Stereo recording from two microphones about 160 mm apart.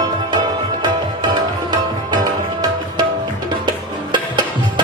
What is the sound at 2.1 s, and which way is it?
Tabla, 25° right (ahead or behind).